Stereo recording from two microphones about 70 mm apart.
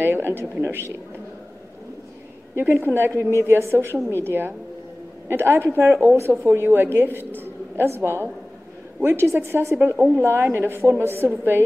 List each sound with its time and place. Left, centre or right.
0.0 s a woman's voice: right
2.5 s a woman's voice: right